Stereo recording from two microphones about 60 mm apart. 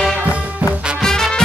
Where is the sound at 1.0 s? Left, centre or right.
Centre.